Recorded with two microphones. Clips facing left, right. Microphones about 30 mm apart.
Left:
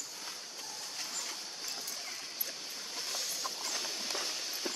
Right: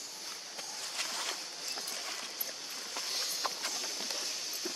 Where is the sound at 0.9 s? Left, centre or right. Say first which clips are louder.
Right 5 dB; right.